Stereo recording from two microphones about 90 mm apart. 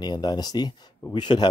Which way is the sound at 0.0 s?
50° left (ahead or behind).